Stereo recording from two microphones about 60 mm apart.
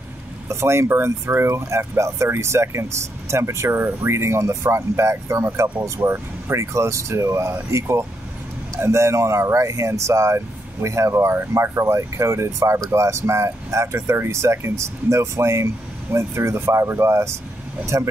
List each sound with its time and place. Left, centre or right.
0.5 s speech: right
8.8 s speech: right